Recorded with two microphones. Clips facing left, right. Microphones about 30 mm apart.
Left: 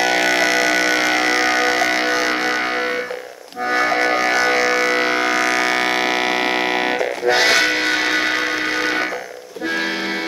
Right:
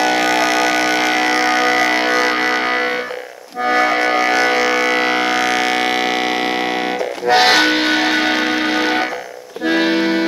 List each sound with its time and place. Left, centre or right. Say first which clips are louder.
0.0 s music: right 1 dB; centre
3.7 s civil defense siren: right 2 dB; centre
7.2 s music: right 4 dB; centre
9.7 s accordion: right 7 dB; right